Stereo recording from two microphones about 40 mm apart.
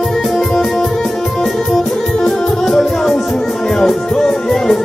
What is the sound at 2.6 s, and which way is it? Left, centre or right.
Music, centre.